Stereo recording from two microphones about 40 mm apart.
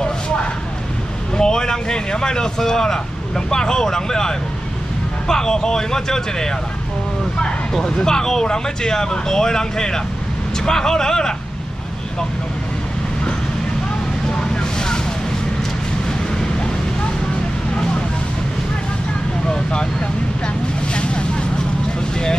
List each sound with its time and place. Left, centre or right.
1.3 s speech: centre
7.7 s speech: centre
14.3 s vehicle: centre
19.5 s speech: left
20.9 s vehicle: left